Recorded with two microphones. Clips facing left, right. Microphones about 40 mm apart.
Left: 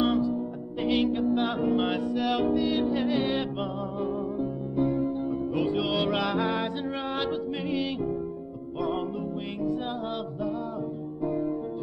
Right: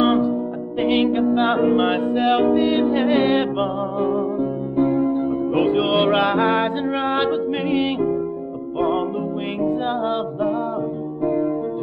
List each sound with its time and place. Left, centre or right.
0.0 s music: right